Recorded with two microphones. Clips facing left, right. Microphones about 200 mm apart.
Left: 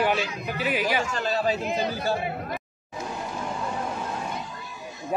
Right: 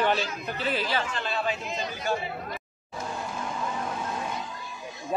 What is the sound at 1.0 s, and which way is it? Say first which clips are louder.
Speech: left 5 dB; 40° left (ahead or behind).